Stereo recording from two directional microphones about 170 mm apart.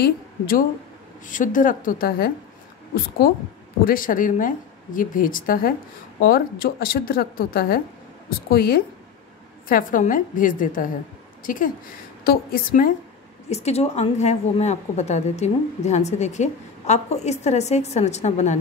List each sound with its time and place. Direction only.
0.0 s a woman's voice: 60° left (ahead or behind)
13.5 s a woman's voice: 40° left (ahead or behind)